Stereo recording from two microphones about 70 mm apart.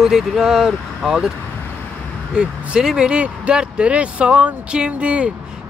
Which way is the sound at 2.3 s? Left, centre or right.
Centre.